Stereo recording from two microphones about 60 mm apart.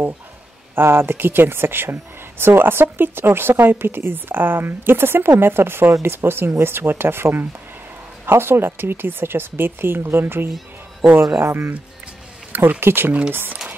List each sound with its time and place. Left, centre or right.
0.7 s speech: right